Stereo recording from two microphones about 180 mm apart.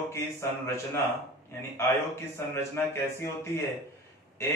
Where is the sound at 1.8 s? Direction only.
15° left (ahead or behind).